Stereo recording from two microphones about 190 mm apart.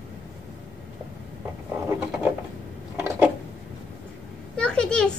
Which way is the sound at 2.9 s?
10° right (ahead or behind).